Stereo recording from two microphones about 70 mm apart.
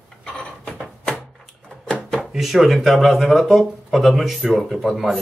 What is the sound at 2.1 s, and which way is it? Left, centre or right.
Speech, centre.